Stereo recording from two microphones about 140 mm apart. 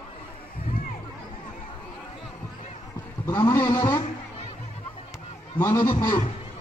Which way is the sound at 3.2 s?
20° left (ahead or behind).